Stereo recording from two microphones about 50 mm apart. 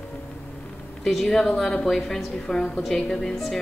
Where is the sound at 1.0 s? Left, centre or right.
Centre.